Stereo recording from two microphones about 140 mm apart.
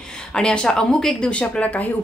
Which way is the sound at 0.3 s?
5° left (ahead or behind).